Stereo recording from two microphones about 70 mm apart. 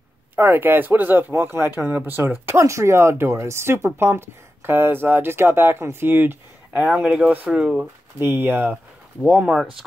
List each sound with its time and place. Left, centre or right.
0.4 s speech: right
2.6 s speech: right
6.8 s speech: centre
9.5 s speech: centre